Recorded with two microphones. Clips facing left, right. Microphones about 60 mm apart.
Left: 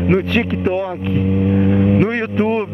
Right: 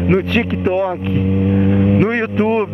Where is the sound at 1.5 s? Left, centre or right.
Right.